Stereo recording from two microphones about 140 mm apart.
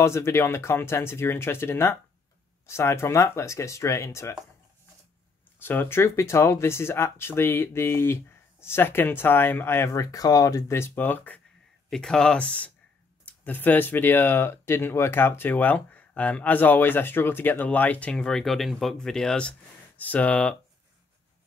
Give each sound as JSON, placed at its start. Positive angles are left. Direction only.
{"t": 0.0, "sound": "speech", "side_deg": 20}
{"t": 5.6, "sound": "speech", "side_deg": 15}